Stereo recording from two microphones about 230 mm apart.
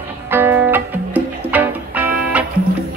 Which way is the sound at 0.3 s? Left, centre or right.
Centre.